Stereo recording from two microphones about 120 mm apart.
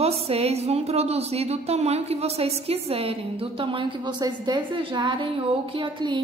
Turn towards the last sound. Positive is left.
turn(degrees=-40)  # may be behind; listen again after turning